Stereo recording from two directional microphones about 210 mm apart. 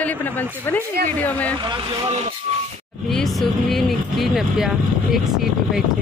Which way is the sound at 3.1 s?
Centre (ahead or behind).